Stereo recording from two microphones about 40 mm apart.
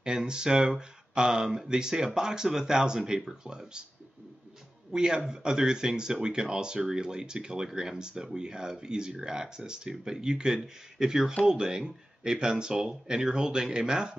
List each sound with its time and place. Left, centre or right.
0.0 s speech: right
4.9 s speech: centre